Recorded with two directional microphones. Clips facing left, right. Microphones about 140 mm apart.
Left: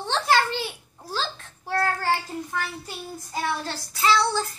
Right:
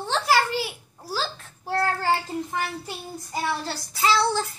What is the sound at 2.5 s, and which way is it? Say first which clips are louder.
Child singing: right 2 dB; 15° right (ahead or behind).